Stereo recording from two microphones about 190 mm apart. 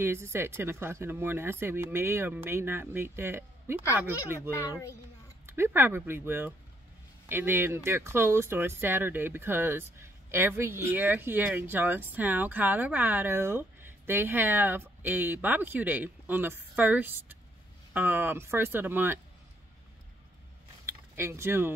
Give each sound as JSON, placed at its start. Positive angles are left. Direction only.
{"t": 0.0, "sound": "speech", "side_deg": -15}
{"t": 4.5, "sound": "a child's voice", "side_deg": 15}
{"t": 5.5, "sound": "speech", "side_deg": -10}
{"t": 20.8, "sound": "a sound", "side_deg": -15}